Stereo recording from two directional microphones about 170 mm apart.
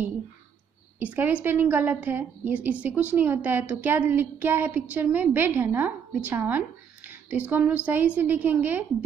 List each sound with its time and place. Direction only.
0.9 s a woman's voice: 10° right (ahead or behind)